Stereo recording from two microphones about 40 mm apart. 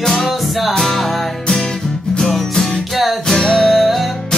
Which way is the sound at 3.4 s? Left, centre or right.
Centre.